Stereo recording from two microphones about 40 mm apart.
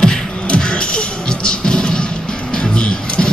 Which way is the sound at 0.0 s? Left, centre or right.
Left.